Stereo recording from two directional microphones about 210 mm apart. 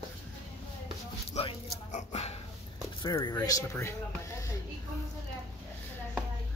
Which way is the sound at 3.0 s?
20° left (ahead or behind).